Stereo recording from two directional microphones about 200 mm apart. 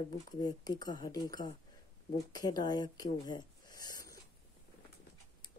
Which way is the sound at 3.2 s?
20° left (ahead or behind).